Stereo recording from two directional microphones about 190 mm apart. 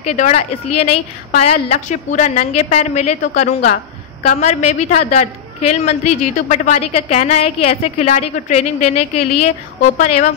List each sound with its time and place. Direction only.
0.0 s a woman's voice: 35° left (ahead or behind)